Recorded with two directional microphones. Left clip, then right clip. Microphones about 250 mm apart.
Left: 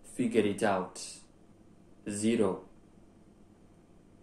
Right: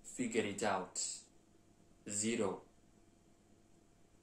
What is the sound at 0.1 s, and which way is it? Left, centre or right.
Speech, centre.